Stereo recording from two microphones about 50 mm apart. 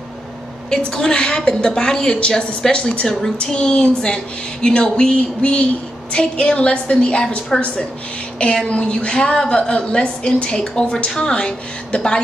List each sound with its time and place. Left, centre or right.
0.7 s a woman's voice: centre
3.1 s a woman's voice: centre